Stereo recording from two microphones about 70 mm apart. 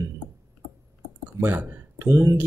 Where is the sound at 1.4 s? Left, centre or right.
Right.